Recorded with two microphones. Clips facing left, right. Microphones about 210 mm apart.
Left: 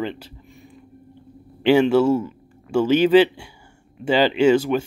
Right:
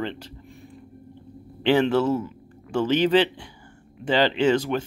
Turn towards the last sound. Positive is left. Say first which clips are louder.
# left 5 dB
turn(degrees=10)  # may be behind; listen again after turning